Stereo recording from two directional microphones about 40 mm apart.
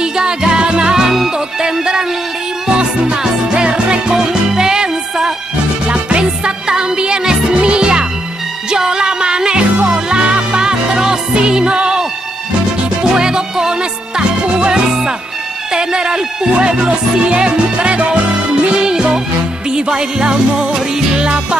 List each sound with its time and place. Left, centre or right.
0.0 s music: centre
5.9 s music: right